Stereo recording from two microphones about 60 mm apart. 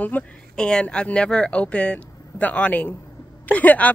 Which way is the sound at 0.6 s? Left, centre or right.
Centre.